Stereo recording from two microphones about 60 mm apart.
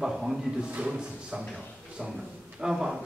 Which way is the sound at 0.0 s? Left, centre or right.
Centre.